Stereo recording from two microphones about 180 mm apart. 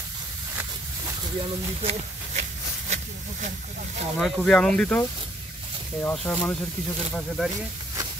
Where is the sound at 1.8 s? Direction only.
35° right (ahead or behind).